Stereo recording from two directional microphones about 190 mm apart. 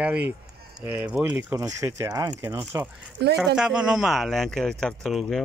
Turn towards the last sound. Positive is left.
turn(degrees=0)  # may be behind; listen again after turning